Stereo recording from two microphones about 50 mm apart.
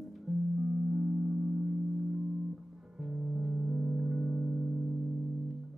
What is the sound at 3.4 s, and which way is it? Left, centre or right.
Music, centre.